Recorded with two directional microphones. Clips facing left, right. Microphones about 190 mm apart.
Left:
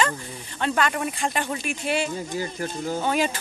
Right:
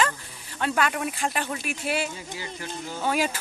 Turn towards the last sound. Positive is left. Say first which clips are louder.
# left 2 dB
turn(degrees=-5)  # may be behind; listen again after turning